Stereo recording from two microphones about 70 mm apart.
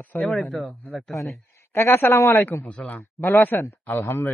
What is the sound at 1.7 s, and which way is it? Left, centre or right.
Speech, left.